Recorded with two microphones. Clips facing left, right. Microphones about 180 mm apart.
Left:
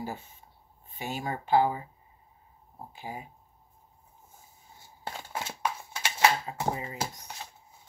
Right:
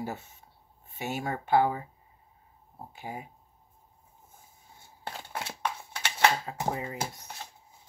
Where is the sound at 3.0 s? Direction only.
55° right (ahead or behind).